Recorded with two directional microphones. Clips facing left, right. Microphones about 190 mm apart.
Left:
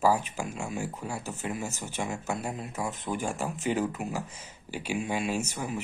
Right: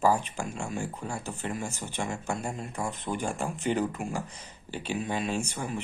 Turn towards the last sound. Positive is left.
turn(degrees=5)  # may be behind; listen again after turning